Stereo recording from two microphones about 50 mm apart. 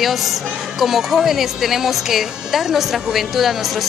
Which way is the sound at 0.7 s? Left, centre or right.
Centre.